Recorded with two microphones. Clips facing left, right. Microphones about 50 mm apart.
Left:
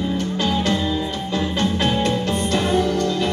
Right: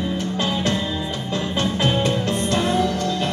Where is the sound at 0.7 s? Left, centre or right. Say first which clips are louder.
Left 3 dB; centre.